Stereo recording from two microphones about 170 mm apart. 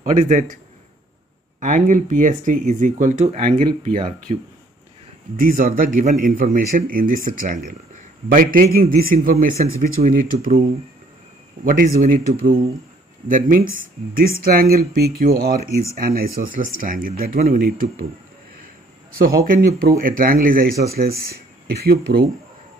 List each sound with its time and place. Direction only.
0.0 s speech: 45° right (ahead or behind)
1.6 s speech: 45° right (ahead or behind)
3.9 s speech: 45° right (ahead or behind)
11.6 s speech: 55° right (ahead or behind)
19.1 s speech: 60° right (ahead or behind)